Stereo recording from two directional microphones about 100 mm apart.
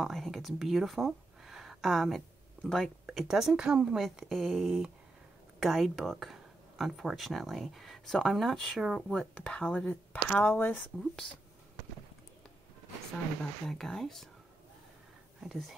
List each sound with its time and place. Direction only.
0.0 s speech: centre (ahead or behind)
10.4 s speech: 20° left (ahead or behind)
13.7 s speech: 5° left (ahead or behind)
15.4 s speech: 5° right (ahead or behind)